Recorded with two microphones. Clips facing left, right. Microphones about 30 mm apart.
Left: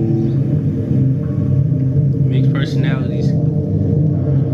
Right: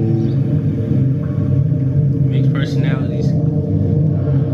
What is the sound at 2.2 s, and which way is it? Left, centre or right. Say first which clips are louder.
Rumble: even; centre.